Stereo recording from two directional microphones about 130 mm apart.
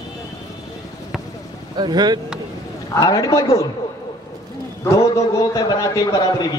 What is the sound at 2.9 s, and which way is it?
Speech, 30° left (ahead or behind).